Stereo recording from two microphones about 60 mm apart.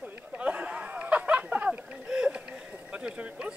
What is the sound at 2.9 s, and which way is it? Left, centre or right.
Speech, centre.